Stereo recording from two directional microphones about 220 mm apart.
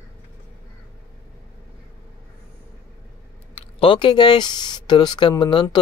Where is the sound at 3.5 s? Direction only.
25° left (ahead or behind).